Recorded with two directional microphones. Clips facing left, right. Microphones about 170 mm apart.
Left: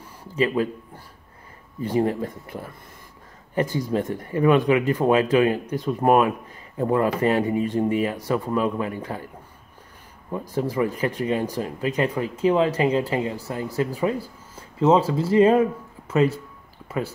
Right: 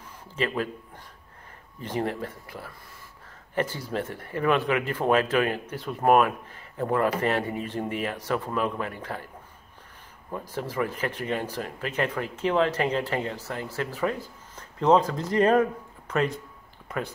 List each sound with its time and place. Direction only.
0.3 s a man's voice: 15° left (ahead or behind)
3.5 s speech: 15° left (ahead or behind)
10.3 s speech: 15° left (ahead or behind)